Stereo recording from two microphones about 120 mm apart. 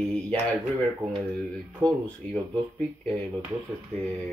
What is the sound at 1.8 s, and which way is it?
Speech, 25° right (ahead or behind).